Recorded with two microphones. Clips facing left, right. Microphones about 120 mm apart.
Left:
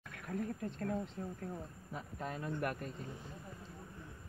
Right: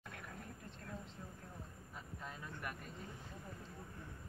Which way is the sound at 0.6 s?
55° left (ahead or behind).